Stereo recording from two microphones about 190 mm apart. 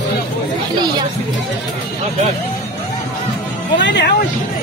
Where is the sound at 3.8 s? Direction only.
65° left (ahead or behind).